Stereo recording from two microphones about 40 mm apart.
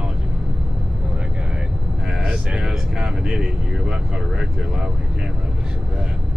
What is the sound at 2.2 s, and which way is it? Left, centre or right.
Speech, right.